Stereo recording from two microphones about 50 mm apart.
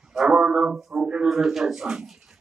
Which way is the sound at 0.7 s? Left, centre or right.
Centre.